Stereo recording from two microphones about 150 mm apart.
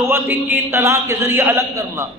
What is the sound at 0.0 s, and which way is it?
A man's voice, 15° right (ahead or behind).